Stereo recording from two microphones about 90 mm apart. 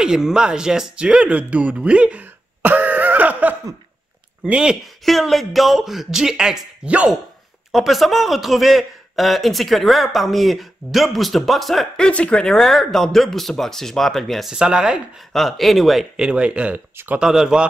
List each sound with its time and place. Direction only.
0.0 s a man's voice: 5° right (ahead or behind)
7.7 s a man's voice: centre (ahead or behind)
15.3 s a man's voice: centre (ahead or behind); by 17.2 s 20° right (ahead or behind)
17.2 s a man's voice: 5° right (ahead or behind)